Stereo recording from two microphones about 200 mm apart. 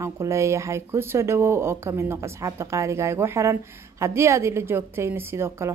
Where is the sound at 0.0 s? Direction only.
15° right (ahead or behind).